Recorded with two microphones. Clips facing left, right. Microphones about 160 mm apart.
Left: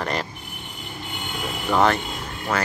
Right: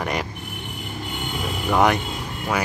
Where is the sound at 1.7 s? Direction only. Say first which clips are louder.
Right 1 dB; 15° right (ahead or behind).